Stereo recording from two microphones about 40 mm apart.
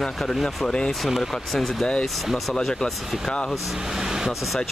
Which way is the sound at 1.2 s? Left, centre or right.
Centre.